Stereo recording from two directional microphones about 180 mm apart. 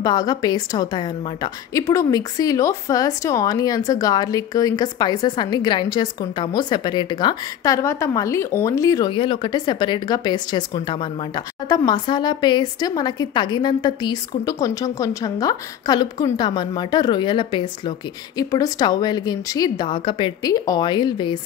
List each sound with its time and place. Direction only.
0.0 s a woman's voice: 20° left (ahead or behind)